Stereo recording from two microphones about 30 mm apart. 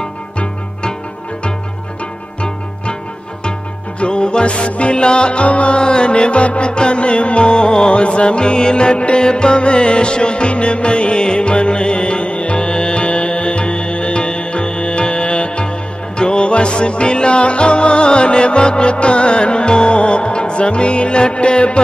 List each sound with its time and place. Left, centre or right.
4.0 s music: left
5.8 s music: left
7.9 s music: left